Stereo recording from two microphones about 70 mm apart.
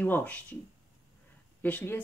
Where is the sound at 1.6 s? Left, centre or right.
Left.